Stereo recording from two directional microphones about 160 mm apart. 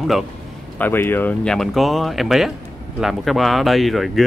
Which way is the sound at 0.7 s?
15° left (ahead or behind).